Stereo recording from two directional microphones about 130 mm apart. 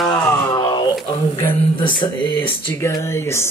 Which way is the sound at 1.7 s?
35° left (ahead or behind).